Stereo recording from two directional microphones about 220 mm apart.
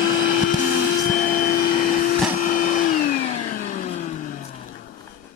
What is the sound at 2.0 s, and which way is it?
Vacuum cleaner, 35° left (ahead or behind).